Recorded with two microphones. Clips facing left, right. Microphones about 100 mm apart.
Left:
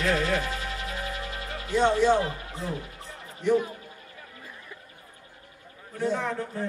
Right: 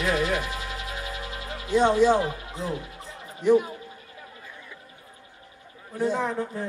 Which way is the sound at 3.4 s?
15° right (ahead or behind).